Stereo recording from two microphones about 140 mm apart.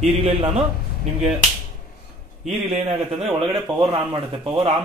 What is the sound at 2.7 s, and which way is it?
A man's voice, 40° right (ahead or behind).